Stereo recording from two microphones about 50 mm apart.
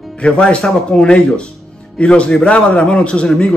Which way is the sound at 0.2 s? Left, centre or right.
Left.